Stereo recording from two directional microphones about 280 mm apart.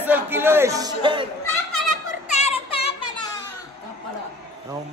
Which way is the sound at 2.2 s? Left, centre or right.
Left.